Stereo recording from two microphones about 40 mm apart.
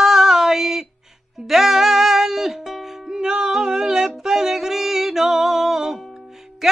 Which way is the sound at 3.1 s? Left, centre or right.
Centre.